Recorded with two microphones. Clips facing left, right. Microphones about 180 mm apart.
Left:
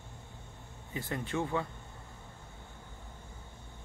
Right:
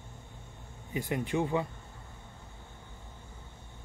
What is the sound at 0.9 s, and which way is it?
Speech, 15° right (ahead or behind).